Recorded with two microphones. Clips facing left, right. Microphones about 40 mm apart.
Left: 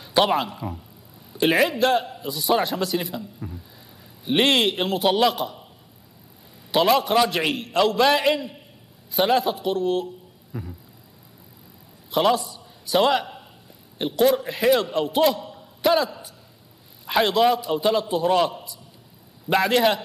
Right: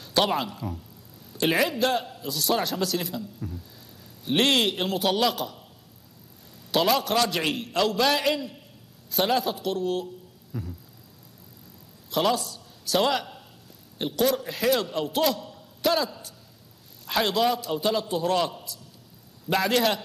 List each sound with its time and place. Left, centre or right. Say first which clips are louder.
0.2 s a man's voice: left 4 dB; centre
0.6 s speech: left 2 dB; centre
1.5 s a man's voice: left 4 dB; centre
6.7 s a man's voice: left 4 dB; centre
10.5 s a sound: left 1 dB; centre
12.1 s a man's voice: left 4 dB; centre